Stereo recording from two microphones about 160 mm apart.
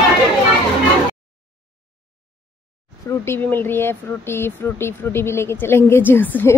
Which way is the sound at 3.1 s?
15° left (ahead or behind).